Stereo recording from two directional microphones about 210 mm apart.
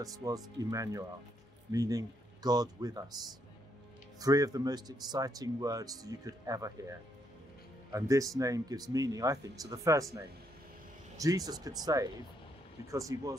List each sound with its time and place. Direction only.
0.0 s speech: 15° right (ahead or behind)
4.2 s speech: 15° right (ahead or behind)
11.1 s speech: 15° right (ahead or behind)